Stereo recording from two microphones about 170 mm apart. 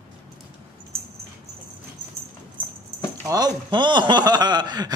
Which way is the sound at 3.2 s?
20° right (ahead or behind).